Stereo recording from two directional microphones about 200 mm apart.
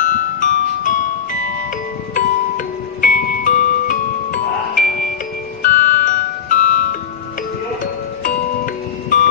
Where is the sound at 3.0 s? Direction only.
45° left (ahead or behind).